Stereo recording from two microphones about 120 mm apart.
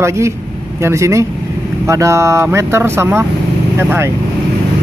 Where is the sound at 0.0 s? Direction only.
25° right (ahead or behind).